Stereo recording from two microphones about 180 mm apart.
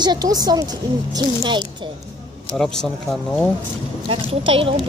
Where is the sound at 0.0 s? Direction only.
20° right (ahead or behind).